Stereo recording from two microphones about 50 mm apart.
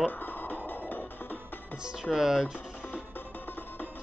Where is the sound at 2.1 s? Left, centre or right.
Centre.